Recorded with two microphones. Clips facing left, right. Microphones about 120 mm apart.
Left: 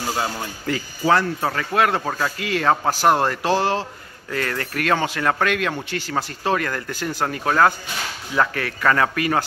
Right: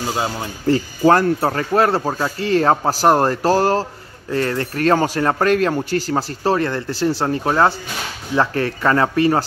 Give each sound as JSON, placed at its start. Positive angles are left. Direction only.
{"t": 0.7, "sound": "speech", "side_deg": -40}
{"t": 1.5, "sound": "speech", "side_deg": -35}
{"t": 4.3, "sound": "speech", "side_deg": -30}